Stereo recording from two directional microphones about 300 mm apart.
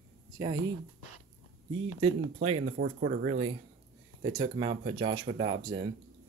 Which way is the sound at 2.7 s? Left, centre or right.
Right.